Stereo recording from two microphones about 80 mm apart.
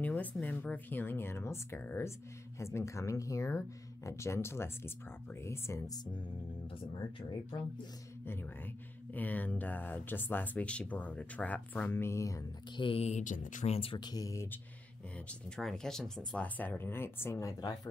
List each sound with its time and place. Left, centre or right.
0.0 s speech: centre
6.7 s speech: left
9.1 s speech: left
12.8 s speech: left
13.9 s speech: left
14.2 s speech: left
15.1 s speech: centre; by 17.6 s left